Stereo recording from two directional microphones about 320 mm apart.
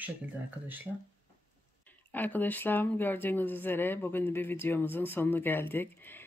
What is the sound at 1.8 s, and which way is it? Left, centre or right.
Speech, centre.